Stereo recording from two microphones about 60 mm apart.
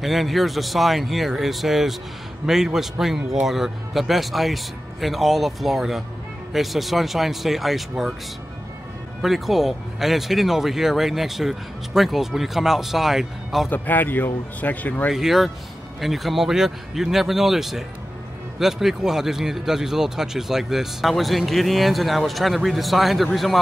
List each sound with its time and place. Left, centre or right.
0.0 s speech: centre
9.2 s speech: centre
13.7 s speech: left
15.1 s speech: centre